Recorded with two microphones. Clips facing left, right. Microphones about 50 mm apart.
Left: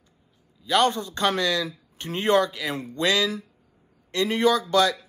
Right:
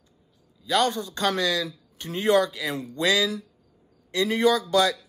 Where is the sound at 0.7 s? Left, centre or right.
Left.